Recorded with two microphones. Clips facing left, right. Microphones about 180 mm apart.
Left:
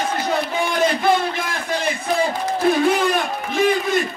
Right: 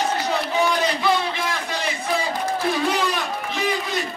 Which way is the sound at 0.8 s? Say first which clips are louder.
Left 3 dB; 50° left (ahead or behind).